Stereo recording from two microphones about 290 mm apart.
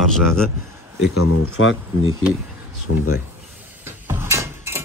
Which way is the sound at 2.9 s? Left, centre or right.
Left.